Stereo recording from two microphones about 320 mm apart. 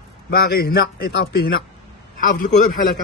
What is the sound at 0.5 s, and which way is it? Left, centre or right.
A man's voice, left.